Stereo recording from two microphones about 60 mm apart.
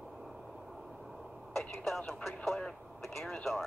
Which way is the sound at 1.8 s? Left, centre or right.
Centre.